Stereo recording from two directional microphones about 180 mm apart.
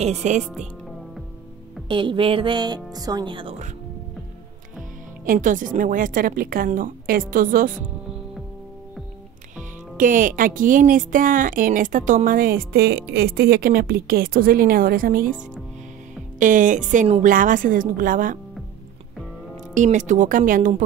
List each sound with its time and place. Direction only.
0.0 s speech: 40° right (ahead or behind)
1.9 s speech: 30° right (ahead or behind)
5.2 s speech: 50° right (ahead or behind)
9.6 s speech: 50° right (ahead or behind)
16.3 s speech: 45° right (ahead or behind)
19.7 s speech: 45° right (ahead or behind)